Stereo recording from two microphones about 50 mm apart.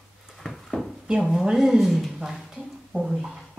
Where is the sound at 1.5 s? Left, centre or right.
Centre.